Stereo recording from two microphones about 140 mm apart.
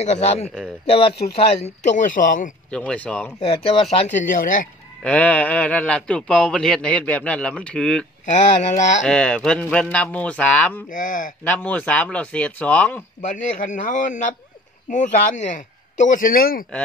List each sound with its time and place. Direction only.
0.0 s a man's voice: 50° left (ahead or behind); by 2.5 s 70° left (ahead or behind)
2.7 s speech: 10° left (ahead or behind)
4.1 s speech: 65° left (ahead or behind)
5.0 s speech: 10° left (ahead or behind)
8.3 s speech: 60° left (ahead or behind)
9.0 s speech: 5° left (ahead or behind)
10.9 s speech: 70° left (ahead or behind)
11.4 s speech: 10° left (ahead or behind)
13.2 s speech: 65° left (ahead or behind); by 16.6 s 90° left